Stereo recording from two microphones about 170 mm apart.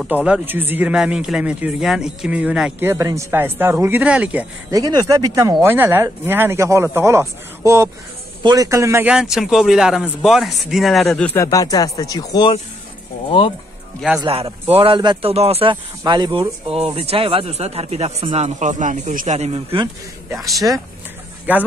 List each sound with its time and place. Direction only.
0.0 s speech: 5° right (ahead or behind)
4.6 s a man's voice: 20° right (ahead or behind); by 11.3 s 5° left (ahead or behind)
11.3 s speech: 20° left (ahead or behind)
14.2 s speech: 35° right (ahead or behind)
20.3 s a man's voice: centre (ahead or behind)